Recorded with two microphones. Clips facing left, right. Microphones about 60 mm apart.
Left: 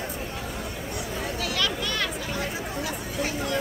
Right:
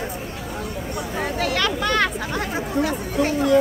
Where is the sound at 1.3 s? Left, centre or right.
Right.